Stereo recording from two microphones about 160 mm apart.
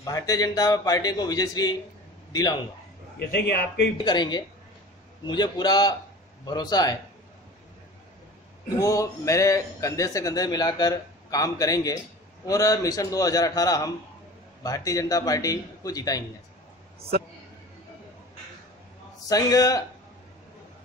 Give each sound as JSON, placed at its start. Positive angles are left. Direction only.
{"t": 0.0, "sound": "a man's voice", "side_deg": 20}
{"t": 3.2, "sound": "a man's voice", "side_deg": 80}
{"t": 4.0, "sound": "a man's voice", "side_deg": 25}
{"t": 8.7, "sound": "a man's voice", "side_deg": 20}
{"t": 19.2, "sound": "a man's voice", "side_deg": 20}